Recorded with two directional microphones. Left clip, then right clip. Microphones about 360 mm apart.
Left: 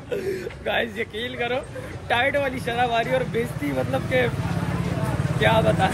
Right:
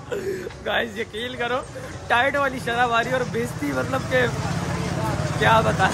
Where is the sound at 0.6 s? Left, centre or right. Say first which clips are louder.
Even; centre.